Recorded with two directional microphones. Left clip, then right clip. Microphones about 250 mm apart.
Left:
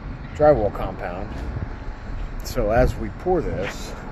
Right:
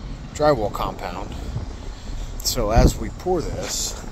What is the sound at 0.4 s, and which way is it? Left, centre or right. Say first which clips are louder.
Speech: left 3 dB; centre.